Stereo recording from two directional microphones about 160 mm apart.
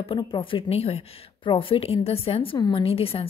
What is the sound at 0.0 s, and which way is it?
Speech, 30° left (ahead or behind).